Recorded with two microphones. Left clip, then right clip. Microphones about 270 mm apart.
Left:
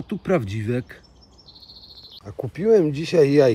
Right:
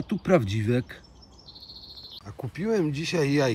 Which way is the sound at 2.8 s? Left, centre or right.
Centre.